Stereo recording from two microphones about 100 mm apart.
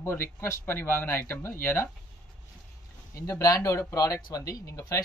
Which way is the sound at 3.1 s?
35° left (ahead or behind).